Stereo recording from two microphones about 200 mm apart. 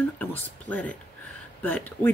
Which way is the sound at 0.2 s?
10° left (ahead or behind).